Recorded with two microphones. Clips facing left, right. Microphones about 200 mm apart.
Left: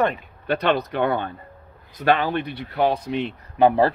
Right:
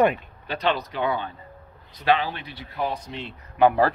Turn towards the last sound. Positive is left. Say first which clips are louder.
# left 2 dB
turn(degrees=30)  # may be behind; listen again after turning